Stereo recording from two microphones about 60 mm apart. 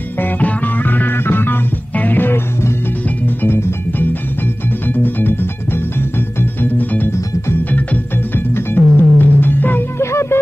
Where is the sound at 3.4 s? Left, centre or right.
Left.